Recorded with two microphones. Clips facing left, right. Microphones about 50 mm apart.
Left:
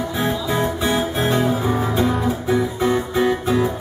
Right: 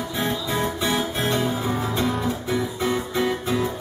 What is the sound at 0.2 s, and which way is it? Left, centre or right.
Music, centre.